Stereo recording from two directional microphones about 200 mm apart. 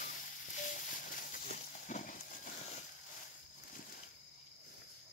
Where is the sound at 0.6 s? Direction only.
40° left (ahead or behind).